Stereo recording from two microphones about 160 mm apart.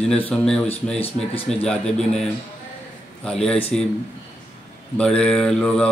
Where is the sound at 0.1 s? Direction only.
5° left (ahead or behind).